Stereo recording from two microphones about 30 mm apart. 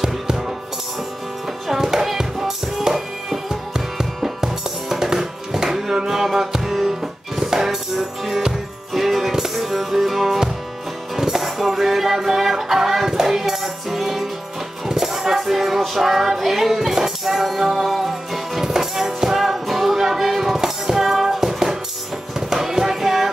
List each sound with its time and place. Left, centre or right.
1.7 s music: centre
8.9 s music: centre
22.5 s child singing: centre